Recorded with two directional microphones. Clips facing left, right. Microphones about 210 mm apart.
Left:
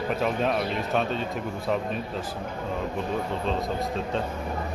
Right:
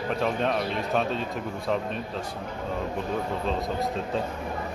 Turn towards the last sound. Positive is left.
turn(degrees=0)  # may be behind; listen again after turning